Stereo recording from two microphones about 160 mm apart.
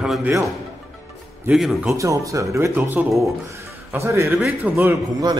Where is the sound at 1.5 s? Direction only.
Centre (ahead or behind).